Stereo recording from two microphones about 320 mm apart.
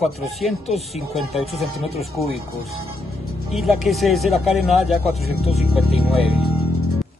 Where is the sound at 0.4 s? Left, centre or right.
Centre.